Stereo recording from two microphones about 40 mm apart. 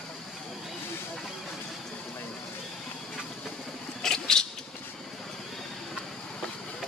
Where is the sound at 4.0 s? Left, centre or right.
Centre.